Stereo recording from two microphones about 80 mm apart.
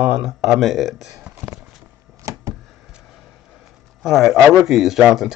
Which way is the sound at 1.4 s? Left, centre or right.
Centre.